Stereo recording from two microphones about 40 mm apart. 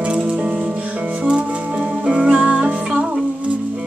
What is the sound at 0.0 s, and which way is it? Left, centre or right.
Music, right.